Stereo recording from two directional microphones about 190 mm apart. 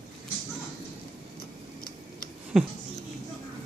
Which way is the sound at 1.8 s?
50° left (ahead or behind).